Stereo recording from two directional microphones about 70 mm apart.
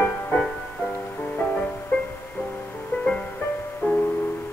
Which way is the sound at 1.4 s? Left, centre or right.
Left.